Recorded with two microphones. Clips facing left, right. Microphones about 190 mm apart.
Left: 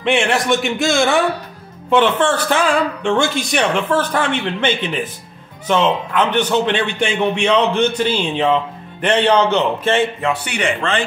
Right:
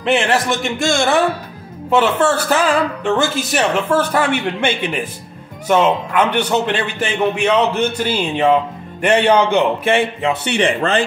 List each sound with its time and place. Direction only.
0.0 s speech: centre (ahead or behind)
10.4 s speech: 25° right (ahead or behind)
10.8 s speech: 35° right (ahead or behind)